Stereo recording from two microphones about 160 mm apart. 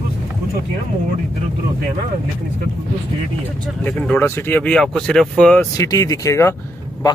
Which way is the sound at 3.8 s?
10° left (ahead or behind).